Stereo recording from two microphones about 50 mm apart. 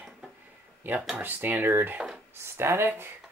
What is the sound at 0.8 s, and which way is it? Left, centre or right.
Speech, right.